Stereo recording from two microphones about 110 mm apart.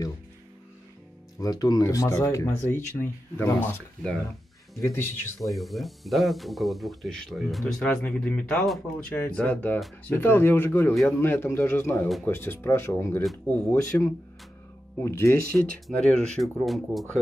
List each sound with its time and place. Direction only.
1.4 s speech: 35° left (ahead or behind); by 5.1 s 20° left (ahead or behind)
5.4 s speech: centre (ahead or behind); by 15.3 s 25° left (ahead or behind)
15.9 s speech: 10° left (ahead or behind)